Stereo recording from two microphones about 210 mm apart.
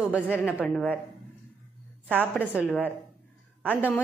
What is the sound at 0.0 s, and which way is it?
Speech, 5° right (ahead or behind).